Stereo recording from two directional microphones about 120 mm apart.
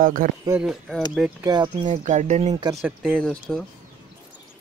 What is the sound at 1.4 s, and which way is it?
Speech, 35° right (ahead or behind).